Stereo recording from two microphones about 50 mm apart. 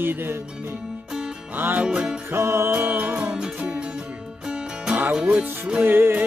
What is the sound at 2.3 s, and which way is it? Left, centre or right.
Music, right.